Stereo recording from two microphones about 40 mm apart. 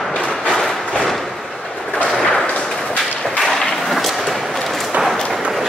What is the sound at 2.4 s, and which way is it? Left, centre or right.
Artillery fire, left.